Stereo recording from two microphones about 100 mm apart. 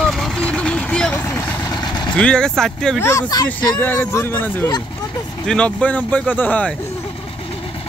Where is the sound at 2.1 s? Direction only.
10° left (ahead or behind).